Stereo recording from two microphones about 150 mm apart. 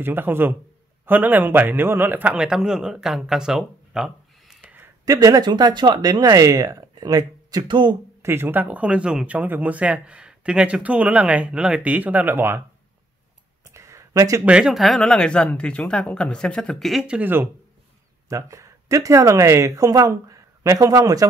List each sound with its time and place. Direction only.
0.0 s a man's voice: 15° right (ahead or behind)
5.0 s speech: 25° right (ahead or behind)
8.2 s speech: 15° right (ahead or behind)
13.7 s a sound: 20° right (ahead or behind)
14.4 s speech: 5° right (ahead or behind); by 21.3 s 25° right (ahead or behind)